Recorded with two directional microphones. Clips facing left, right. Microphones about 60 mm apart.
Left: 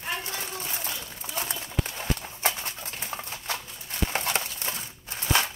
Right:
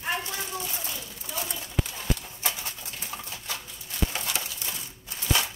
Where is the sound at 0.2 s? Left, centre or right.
Left.